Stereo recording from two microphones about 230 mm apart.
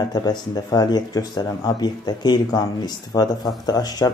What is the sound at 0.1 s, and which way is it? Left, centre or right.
Speech, centre.